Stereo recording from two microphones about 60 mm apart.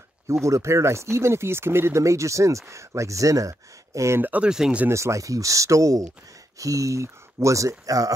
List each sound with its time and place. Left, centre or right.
0.3 s speech: right
4.2 s speech: right
4.5 s speech: centre
4.8 s speech: right